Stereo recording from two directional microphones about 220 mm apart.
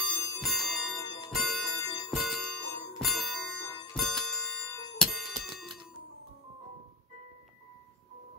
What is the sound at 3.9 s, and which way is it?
Music, centre (ahead or behind).